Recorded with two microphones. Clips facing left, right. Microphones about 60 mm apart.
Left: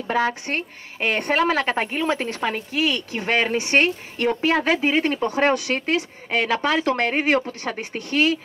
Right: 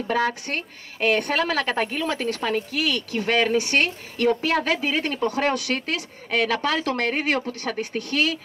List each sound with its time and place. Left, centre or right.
0.1 s a woman's voice: left